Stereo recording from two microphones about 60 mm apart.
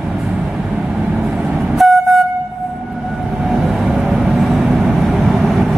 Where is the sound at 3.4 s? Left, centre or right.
Centre.